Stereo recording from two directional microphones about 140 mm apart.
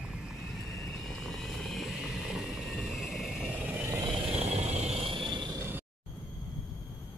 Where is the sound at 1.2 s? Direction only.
Centre (ahead or behind).